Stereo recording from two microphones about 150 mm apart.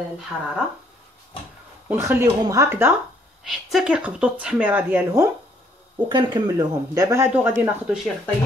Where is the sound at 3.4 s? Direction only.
Centre (ahead or behind).